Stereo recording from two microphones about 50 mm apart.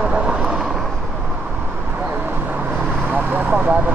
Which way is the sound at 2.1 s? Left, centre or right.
Right.